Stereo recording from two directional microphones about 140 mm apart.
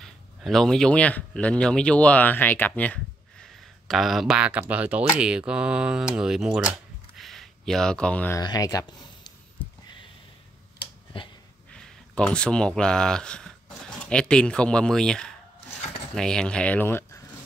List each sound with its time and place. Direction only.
0.0 s speech: centre (ahead or behind)
7.2 s a sound: centre (ahead or behind)
8.4 s speech: 25° left (ahead or behind)
11.1 s wheeze: 35° left (ahead or behind)
11.7 s speech: 5° left (ahead or behind)